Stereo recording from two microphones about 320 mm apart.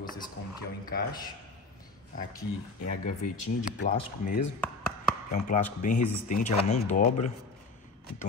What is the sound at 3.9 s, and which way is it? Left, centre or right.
A man's voice, left.